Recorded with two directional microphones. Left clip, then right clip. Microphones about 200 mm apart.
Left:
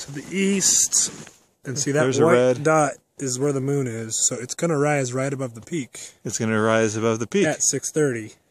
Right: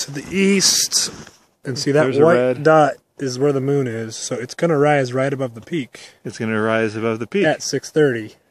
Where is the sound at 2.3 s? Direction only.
20° left (ahead or behind).